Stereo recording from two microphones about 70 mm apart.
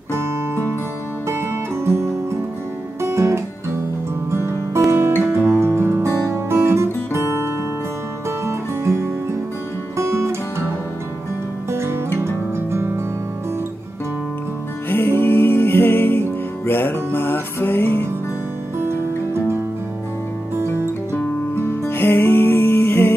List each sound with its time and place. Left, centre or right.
3.0 s music: right
6.0 s music: left
6.3 s music: right
8.5 s music: right
11.7 s music: right
14.9 s music: left
18.8 s music: right
21.2 s music: left